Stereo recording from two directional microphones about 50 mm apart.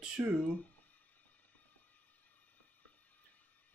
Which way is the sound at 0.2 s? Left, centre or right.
Right.